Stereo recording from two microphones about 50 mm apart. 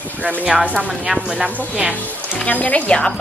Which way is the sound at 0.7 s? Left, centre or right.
Right.